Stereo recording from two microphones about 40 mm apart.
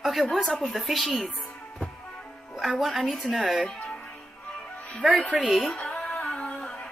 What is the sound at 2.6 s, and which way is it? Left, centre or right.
A woman's voice, centre.